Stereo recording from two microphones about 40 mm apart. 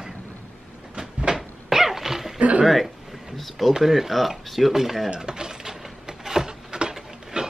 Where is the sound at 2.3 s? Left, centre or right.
Right.